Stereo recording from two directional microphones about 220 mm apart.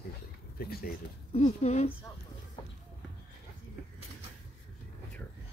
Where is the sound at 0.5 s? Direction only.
45° left (ahead or behind).